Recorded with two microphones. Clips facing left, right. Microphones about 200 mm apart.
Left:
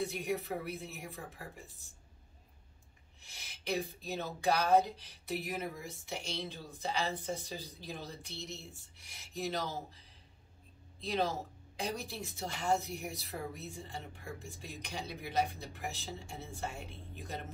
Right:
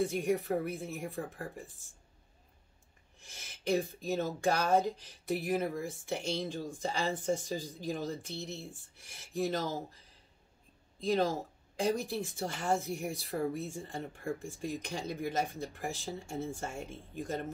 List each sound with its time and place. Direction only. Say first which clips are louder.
0.0 s speech: right 5 dB; 50° right (ahead or behind)
3.3 s speech: right 6 dB; 50° right (ahead or behind)
11.0 s speech: right 4 dB; 50° right (ahead or behind)